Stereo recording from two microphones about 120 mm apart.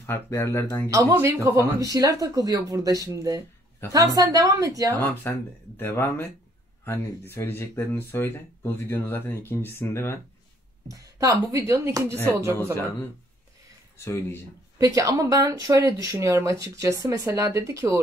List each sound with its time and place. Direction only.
0.0 s speech: 20° left (ahead or behind)
0.8 s a woman's voice: 25° right (ahead or behind)
5.2 s speech: 20° left (ahead or behind)
10.9 s speech: 30° right (ahead or behind)
13.9 s speech: 20° left (ahead or behind)
14.8 s speech: 25° right (ahead or behind)